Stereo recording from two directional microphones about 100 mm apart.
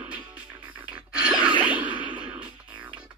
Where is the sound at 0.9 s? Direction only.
10° right (ahead or behind).